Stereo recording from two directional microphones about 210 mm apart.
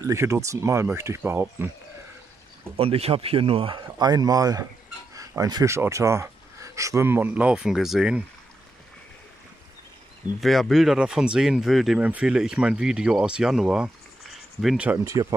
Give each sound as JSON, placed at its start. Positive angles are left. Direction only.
{"t": 0.0, "sound": "speech", "side_deg": -15}
{"t": 2.8, "sound": "speech", "side_deg": -25}
{"t": 10.4, "sound": "speech", "side_deg": 0}